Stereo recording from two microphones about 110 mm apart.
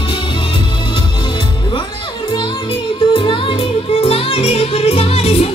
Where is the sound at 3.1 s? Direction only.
50° left (ahead or behind).